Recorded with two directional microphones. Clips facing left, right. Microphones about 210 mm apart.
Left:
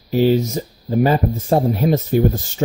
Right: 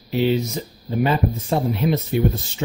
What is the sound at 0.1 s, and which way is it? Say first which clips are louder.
Speech: left 4 dB; 40° left (ahead or behind).